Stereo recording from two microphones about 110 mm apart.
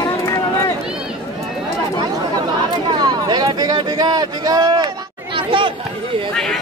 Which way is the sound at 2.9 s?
40° right (ahead or behind).